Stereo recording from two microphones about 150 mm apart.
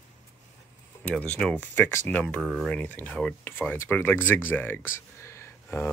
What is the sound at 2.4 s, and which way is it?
Speech, 5° right (ahead or behind).